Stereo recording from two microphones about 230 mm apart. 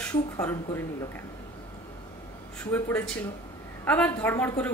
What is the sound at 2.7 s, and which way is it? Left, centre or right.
A woman's voice, centre.